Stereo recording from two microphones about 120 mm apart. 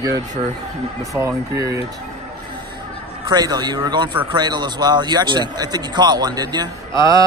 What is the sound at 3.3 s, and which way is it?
A man's voice, 35° right (ahead or behind).